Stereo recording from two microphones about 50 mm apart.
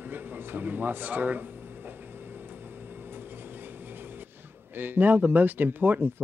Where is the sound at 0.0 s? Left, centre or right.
Right.